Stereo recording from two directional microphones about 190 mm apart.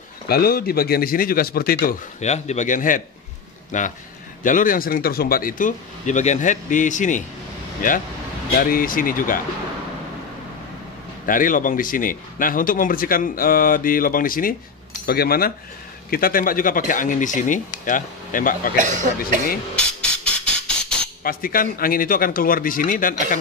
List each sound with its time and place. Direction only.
0.3 s speech: 50° left (ahead or behind)
8.5 s speech: 50° left (ahead or behind)
11.2 s speech: 45° left (ahead or behind)
18.8 s speech: 40° right (ahead or behind)
19.7 s music: 5° left (ahead or behind)
21.2 s speech: 50° left (ahead or behind)